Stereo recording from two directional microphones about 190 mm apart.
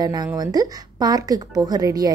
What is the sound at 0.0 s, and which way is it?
Speech, 20° right (ahead or behind).